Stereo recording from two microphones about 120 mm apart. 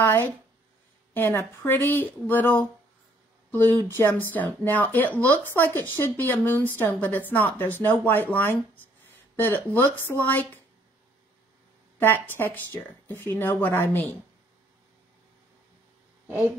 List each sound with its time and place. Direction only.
0.0 s speech: 20° left (ahead or behind)
12.0 s speech: 15° left (ahead or behind)
16.3 s speech: 15° right (ahead or behind)